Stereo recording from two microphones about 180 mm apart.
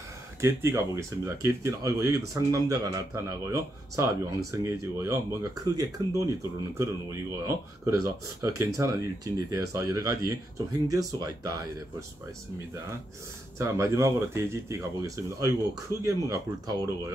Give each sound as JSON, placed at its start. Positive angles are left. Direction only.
{"t": 0.4, "sound": "speech", "side_deg": -15}
{"t": 13.6, "sound": "speech", "side_deg": -15}